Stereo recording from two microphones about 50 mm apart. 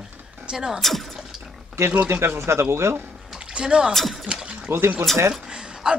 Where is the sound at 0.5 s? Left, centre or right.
Centre.